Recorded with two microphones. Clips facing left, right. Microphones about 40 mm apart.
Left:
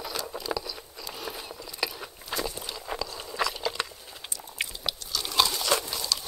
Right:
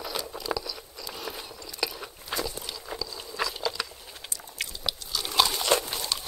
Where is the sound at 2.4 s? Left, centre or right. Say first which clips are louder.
Even; left.